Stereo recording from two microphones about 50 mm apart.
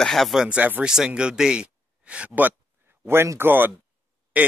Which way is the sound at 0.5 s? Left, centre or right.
Right.